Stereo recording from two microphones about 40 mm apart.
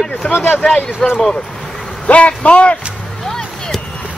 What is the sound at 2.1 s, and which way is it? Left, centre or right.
Speech, left.